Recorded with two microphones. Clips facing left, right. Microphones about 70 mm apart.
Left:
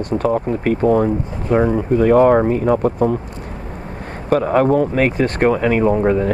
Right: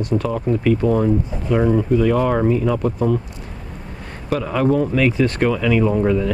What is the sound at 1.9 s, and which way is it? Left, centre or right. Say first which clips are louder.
Speech: left 9 dB; left.